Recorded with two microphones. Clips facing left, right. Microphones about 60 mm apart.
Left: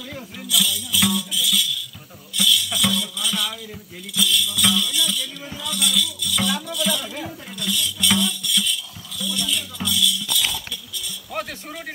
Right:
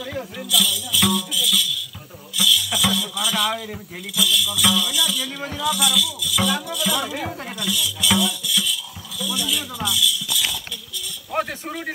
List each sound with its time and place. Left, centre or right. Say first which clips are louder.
0.5 s music: even; centre
2.3 s a sound: right 1 dB; centre
4.1 s music: right 1 dB; centre
5.2 s music: right 6 dB; right
5.7 s music: right 2 dB; centre
7.0 s music: right 5 dB; right
7.6 s a sound: even; centre
9.2 s music: right 1 dB; centre
11.3 s a sound: right 5 dB; centre